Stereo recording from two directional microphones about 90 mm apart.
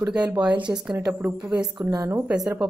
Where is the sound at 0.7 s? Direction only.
25° right (ahead or behind).